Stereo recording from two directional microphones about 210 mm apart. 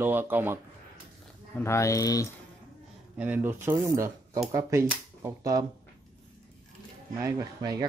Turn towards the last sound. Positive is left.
turn(degrees=-20)  # may be behind; listen again after turning